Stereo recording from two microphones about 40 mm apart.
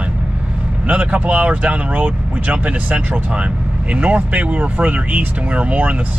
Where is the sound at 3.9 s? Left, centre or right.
Right.